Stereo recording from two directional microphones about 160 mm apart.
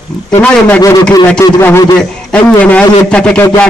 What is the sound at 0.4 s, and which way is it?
A man's voice, 10° left (ahead or behind).